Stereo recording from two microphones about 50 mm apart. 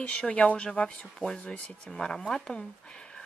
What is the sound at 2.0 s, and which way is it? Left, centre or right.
Speech, centre.